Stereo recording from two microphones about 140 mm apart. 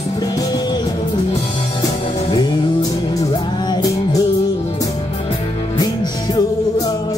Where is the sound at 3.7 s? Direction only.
25° left (ahead or behind).